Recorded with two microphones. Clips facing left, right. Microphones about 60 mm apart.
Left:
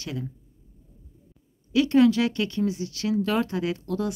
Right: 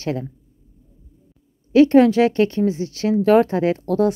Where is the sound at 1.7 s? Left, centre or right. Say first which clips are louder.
Right 7 dB; right.